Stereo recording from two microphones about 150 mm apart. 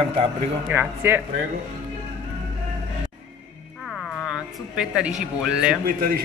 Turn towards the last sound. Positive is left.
turn(degrees=-75)  # may be behind; listen again after turning